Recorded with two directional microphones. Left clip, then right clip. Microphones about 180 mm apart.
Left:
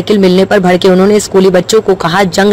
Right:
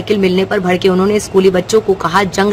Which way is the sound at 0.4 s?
30° left (ahead or behind).